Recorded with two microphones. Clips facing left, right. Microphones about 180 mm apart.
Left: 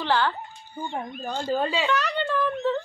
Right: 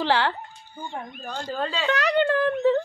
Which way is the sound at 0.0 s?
80° right.